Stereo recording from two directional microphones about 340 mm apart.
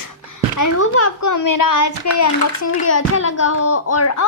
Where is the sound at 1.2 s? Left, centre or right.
Left.